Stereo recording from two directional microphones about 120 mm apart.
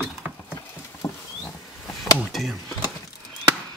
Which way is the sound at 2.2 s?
Centre (ahead or behind).